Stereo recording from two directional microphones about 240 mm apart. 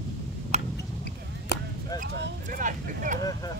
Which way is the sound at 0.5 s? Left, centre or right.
Right.